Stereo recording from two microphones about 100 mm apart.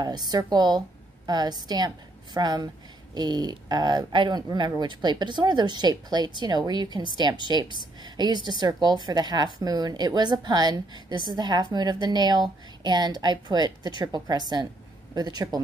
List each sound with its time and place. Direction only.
0.0 s a woman's voice: 45° right (ahead or behind)